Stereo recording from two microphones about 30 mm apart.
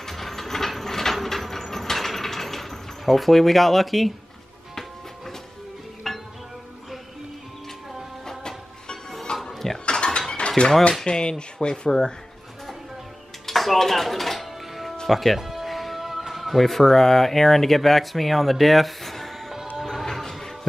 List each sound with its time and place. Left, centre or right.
0.1 s a sound: centre
1.1 s mechanisms: centre
6.0 s music: centre
9.4 s music: centre
9.8 s a sound: left
10.6 s speech: left
13.5 s music: centre
17.3 s speech: centre
19.8 s music: centre